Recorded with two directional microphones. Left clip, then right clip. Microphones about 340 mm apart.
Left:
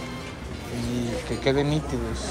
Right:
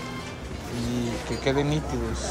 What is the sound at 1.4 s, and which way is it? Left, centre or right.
Speech, centre.